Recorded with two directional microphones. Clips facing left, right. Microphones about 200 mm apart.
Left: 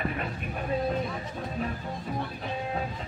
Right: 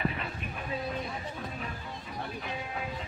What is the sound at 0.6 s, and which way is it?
Vehicle, 45° left (ahead or behind).